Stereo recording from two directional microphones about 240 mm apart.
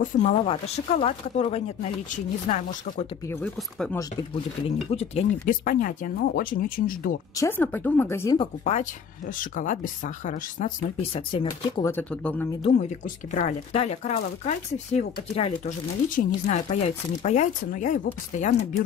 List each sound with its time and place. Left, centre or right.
0.0 s speech: left
3.3 s speech: centre
4.6 s speech: left
7.3 s speech: centre
8.4 s speech: left; by 12.4 s centre
12.6 s speech: left